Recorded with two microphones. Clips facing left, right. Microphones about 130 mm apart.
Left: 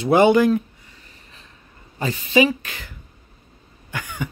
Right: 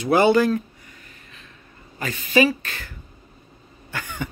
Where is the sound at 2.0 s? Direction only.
30° left (ahead or behind).